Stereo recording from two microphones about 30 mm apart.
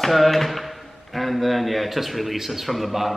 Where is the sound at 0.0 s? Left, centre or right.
Centre.